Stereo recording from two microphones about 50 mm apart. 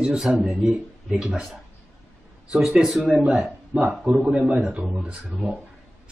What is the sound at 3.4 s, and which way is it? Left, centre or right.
A man's voice, right.